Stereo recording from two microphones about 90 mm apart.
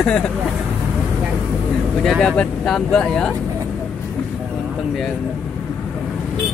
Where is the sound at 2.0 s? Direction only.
5° left (ahead or behind).